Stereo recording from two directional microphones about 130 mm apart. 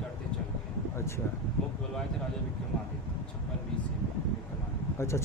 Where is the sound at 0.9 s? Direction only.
20° left (ahead or behind).